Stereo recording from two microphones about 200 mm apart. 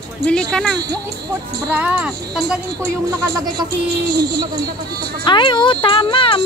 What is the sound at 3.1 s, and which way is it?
Speech, 15° right (ahead or behind).